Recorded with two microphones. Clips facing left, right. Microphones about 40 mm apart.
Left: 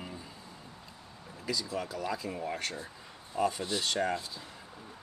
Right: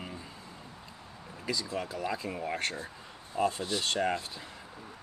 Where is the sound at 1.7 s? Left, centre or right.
Right.